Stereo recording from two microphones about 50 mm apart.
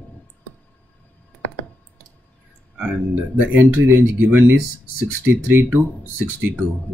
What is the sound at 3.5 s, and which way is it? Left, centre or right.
Speech, right.